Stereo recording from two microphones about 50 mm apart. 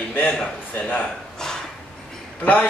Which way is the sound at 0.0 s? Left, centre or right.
Left.